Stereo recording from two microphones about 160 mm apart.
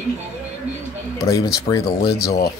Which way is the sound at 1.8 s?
80° left.